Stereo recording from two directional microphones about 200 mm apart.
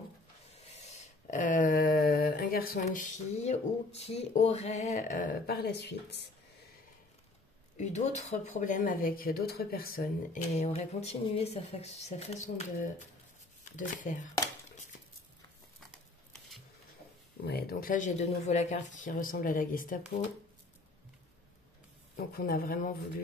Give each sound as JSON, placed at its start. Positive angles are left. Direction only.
{"t": 0.6, "sound": "a sound", "side_deg": 35}
{"t": 7.7, "sound": "speech", "side_deg": 35}
{"t": 10.5, "sound": "speech", "side_deg": 35}
{"t": 17.5, "sound": "speech", "side_deg": 50}
{"t": 22.1, "sound": "speech", "side_deg": 45}